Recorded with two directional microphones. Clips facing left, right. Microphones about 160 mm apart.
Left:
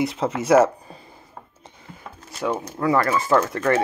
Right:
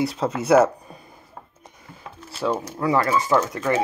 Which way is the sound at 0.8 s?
30° left (ahead or behind).